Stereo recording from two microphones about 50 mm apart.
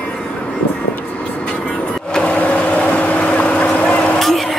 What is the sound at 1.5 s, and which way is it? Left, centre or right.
Vehicle, centre.